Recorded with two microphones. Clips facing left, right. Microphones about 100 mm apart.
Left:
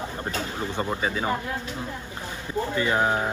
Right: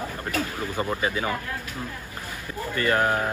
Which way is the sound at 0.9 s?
5° left (ahead or behind).